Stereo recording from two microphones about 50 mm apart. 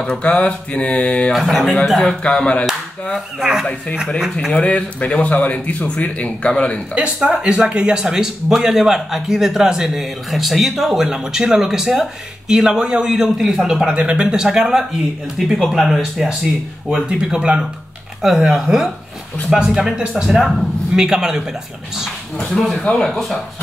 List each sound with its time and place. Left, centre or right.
0.0 s mantra: centre
1.3 s a man's voice: centre
2.2 s mantra: centre
3.3 s a man's voice: centre
4.5 s mantra: left
7.2 s a man's voice: centre
22.5 s a man's voice: centre